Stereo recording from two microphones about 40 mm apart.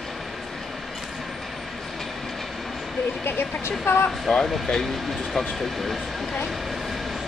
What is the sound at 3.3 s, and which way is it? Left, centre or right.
Speech, left.